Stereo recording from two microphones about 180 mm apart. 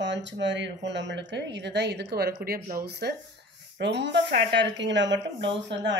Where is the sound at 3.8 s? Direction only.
75° right (ahead or behind).